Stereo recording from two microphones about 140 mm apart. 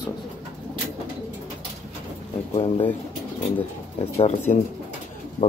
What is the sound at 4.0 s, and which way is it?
Speech, 45° left (ahead or behind).